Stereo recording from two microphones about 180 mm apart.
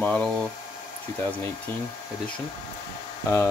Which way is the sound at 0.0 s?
10° left (ahead or behind).